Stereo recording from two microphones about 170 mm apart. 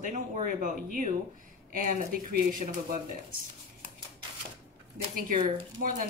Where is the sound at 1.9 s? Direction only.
50° right (ahead or behind).